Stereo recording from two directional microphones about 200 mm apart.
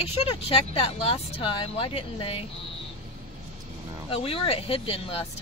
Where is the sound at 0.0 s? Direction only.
30° left (ahead or behind).